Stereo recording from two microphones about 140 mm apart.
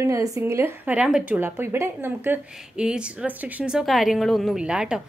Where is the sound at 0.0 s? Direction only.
25° right (ahead or behind).